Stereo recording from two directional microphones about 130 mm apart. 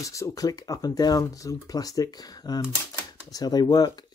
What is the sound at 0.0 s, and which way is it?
Speech, 25° left (ahead or behind).